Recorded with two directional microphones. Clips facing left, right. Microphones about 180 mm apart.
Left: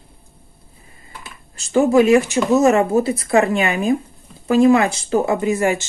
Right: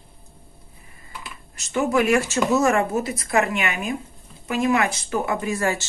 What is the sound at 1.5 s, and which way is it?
Speech, 30° left (ahead or behind).